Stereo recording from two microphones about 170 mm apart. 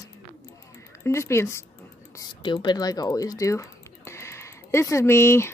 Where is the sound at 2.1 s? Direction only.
25° left (ahead or behind).